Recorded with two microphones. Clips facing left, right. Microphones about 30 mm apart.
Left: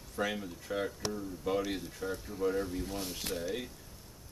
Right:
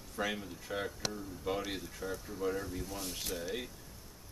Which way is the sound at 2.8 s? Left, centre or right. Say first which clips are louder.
Left 4 dB; left.